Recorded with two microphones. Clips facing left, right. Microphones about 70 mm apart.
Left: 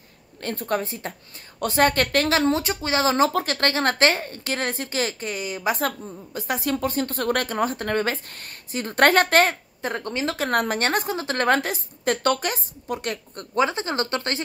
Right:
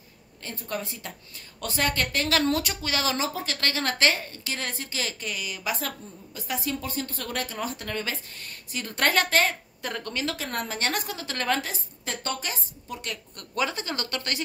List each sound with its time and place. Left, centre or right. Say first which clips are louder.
0.4 s a woman's voice: left 8 dB; left
1.0 s a woman's voice: left 6 dB; left
2.2 s speech: left 4 dB; left
3.4 s a woman's voice: left 6 dB; left
9.8 s a woman's voice: left 5 dB; left
10.3 s a woman's voice: left 9 dB; left
10.8 s a woman's voice: left 6 dB; left